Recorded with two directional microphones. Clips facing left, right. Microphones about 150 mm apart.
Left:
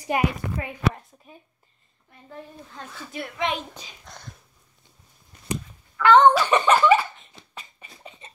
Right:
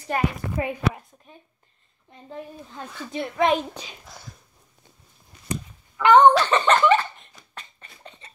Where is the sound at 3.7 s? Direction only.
70° right (ahead or behind).